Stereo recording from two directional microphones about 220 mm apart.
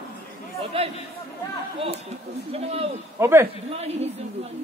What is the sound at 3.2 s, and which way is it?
Speech, 10° right (ahead or behind).